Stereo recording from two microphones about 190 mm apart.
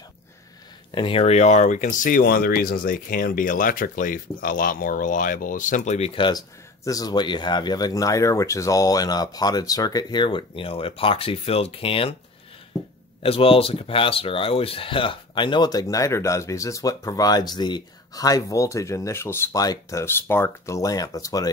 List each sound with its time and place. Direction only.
0.9 s speech: 30° left (ahead or behind)
13.2 s speech: 30° left (ahead or behind)